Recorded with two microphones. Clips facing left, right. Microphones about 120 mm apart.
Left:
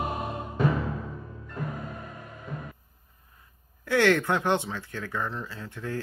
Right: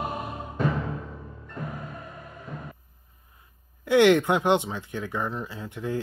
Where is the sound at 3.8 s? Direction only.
20° right (ahead or behind).